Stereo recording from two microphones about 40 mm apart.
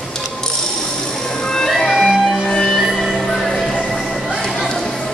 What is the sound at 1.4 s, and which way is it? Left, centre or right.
Music, centre.